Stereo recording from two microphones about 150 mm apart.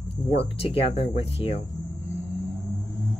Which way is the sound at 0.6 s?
40° left (ahead or behind).